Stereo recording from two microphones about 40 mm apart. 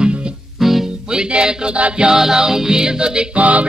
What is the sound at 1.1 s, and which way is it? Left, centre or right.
Music, centre.